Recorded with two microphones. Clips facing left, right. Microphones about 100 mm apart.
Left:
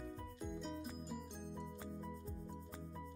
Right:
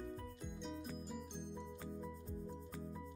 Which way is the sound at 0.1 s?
Centre (ahead or behind).